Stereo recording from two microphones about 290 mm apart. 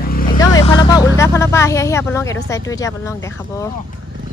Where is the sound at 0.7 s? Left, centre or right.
Centre.